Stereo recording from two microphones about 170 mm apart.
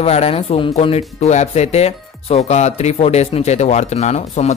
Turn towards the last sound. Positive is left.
turn(degrees=40)  # may be behind; listen again after turning